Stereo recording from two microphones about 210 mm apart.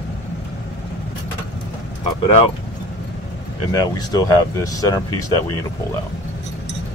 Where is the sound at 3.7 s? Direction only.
20° left (ahead or behind).